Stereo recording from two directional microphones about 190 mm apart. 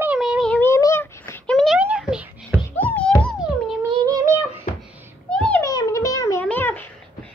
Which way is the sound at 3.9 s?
20° right (ahead or behind).